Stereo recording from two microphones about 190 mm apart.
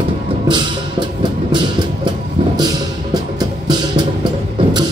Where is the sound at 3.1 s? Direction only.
20° right (ahead or behind).